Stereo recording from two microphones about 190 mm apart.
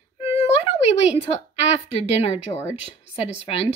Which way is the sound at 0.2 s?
30° left (ahead or behind).